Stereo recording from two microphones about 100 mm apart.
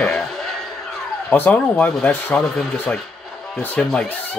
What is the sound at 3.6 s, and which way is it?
Speech, 15° left (ahead or behind).